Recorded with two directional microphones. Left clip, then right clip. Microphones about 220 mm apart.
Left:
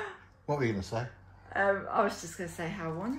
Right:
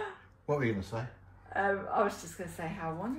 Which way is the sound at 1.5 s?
30° left (ahead or behind).